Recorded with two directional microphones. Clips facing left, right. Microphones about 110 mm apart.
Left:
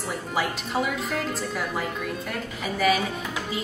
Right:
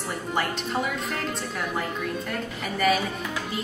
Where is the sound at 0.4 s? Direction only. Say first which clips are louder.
Left 1 dB; centre (ahead or behind).